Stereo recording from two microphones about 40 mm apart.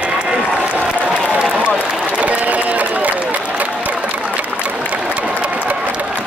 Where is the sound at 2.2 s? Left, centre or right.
Right.